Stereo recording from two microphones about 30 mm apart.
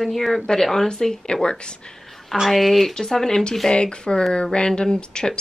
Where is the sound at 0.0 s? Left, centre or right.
Centre.